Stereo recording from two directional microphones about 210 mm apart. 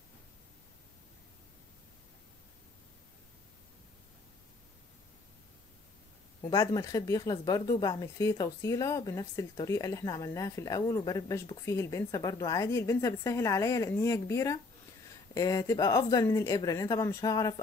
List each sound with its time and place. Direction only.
6.5 s speech: 15° left (ahead or behind)